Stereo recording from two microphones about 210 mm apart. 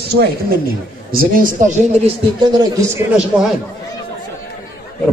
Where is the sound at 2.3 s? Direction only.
20° right (ahead or behind).